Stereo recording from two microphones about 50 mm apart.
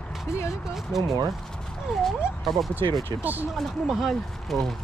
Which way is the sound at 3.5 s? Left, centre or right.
Centre.